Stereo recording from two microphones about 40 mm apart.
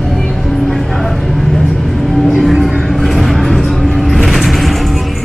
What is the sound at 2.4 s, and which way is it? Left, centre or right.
Vehicle, centre.